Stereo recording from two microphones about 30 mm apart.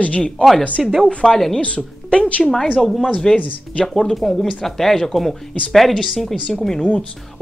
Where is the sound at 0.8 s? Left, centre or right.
Centre.